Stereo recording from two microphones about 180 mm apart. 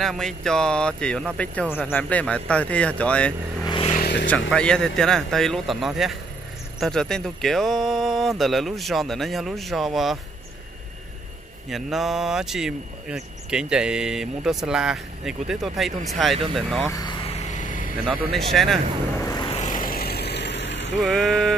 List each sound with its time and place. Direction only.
0.0 s speech: centre (ahead or behind)
3.6 s vehicle: 25° left (ahead or behind)
4.5 s speech: 5° left (ahead or behind)
11.7 s speech: centre (ahead or behind)
16.9 s vehicle: 25° left (ahead or behind); by 17.8 s 45° left (ahead or behind)
18.3 s speech: centre (ahead or behind)
19.2 s vehicle: 20° left (ahead or behind)
19.5 s vehicle: 45° left (ahead or behind); by 20.9 s 75° left (ahead or behind)
21.0 s speech: centre (ahead or behind)